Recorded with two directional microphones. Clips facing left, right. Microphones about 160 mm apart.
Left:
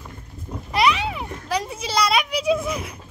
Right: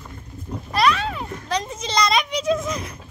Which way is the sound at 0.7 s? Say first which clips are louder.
Even; 15° left (ahead or behind).